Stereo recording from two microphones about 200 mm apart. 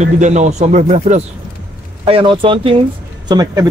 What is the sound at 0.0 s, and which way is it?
Speech, 35° right (ahead or behind).